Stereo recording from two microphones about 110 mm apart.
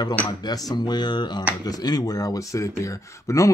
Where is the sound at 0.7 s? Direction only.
40° left (ahead or behind).